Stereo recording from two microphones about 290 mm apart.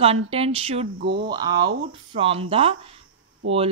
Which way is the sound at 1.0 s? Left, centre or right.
Right.